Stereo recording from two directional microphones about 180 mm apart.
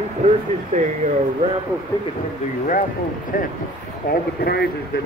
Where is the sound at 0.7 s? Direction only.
40° right (ahead or behind).